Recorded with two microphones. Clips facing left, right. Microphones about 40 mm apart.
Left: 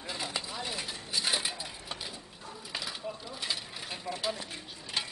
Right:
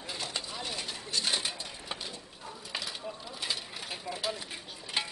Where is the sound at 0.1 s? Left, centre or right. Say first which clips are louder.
Left 1 dB; centre.